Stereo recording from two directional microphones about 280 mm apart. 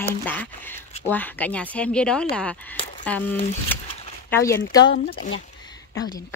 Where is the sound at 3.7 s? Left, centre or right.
Centre.